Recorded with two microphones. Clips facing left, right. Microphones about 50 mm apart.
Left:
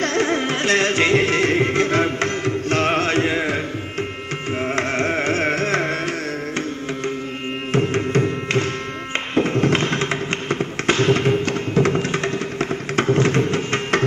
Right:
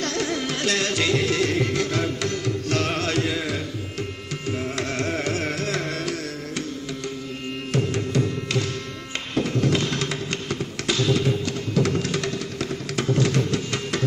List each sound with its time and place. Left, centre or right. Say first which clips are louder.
0.0 s music: left 6 dB; left
4.5 s carnatic music: left 5 dB; left
7.7 s music: left 5 dB; left